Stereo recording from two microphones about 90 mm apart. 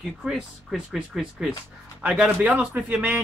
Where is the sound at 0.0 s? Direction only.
5° right (ahead or behind).